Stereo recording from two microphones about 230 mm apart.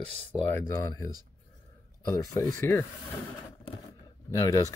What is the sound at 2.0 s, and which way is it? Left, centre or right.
Speech, centre.